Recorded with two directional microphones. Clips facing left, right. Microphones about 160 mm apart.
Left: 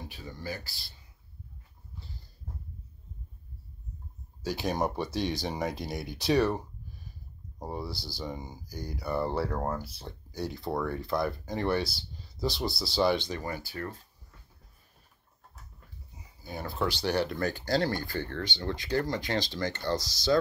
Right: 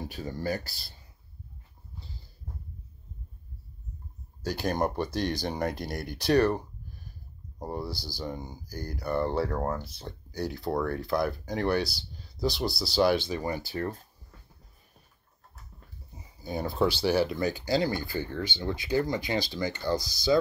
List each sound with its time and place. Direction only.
0.1 s speech: 45° right (ahead or behind)
4.4 s speech: centre (ahead or behind)
13.5 s speech: 25° right (ahead or behind)
16.2 s speech: 20° right (ahead or behind); by 20.3 s 5° right (ahead or behind)